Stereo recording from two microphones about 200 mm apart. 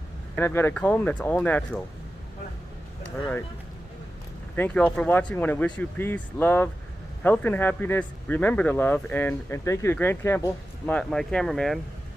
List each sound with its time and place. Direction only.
0.4 s speech: 10° left (ahead or behind)
4.6 s speech: 5° left (ahead or behind)